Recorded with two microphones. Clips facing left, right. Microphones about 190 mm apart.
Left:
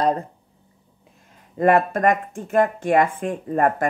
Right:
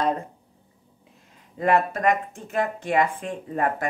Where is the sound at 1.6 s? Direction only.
50° left (ahead or behind).